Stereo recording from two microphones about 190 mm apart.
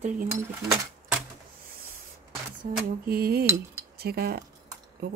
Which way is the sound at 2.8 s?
55° right (ahead or behind).